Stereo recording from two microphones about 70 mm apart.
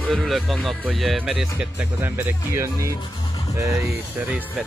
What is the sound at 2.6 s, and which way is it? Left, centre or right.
Speech, right.